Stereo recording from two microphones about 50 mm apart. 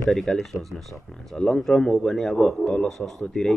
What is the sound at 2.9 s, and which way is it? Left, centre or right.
Speech, centre.